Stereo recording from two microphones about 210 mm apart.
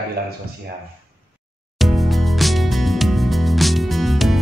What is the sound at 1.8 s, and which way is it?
Music, centre (ahead or behind).